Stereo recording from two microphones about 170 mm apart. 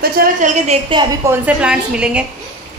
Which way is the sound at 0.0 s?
50° right (ahead or behind).